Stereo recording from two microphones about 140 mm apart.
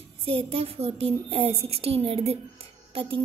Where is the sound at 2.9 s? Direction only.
40° right (ahead or behind).